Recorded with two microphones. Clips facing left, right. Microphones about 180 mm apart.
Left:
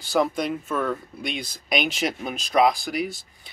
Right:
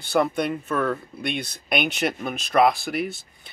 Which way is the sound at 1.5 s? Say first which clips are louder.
Left 2 dB; 55° right (ahead or behind).